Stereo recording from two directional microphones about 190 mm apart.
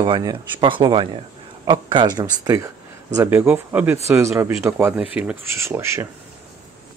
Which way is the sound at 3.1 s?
15° right (ahead or behind).